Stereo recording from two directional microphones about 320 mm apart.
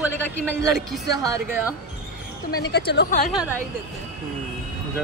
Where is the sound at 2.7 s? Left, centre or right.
Left.